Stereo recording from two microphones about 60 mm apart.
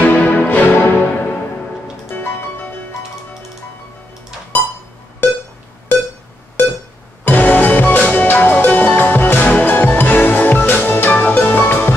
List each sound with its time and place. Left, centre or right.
0.0 s music: left
6.6 s a sound: left
7.2 s music: left